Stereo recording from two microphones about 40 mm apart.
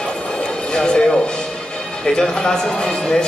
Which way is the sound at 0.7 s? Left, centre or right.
Left.